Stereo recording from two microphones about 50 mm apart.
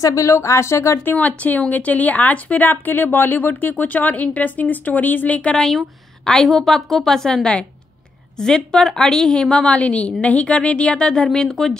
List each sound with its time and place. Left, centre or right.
0.0 s a woman's voice: left
1.0 s speech: left
5.5 s a woman's voice: centre
9.7 s a woman's voice: left; by 11.7 s centre